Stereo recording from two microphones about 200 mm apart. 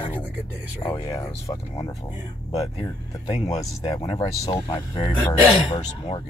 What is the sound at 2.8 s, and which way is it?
Speech, 30° left (ahead or behind).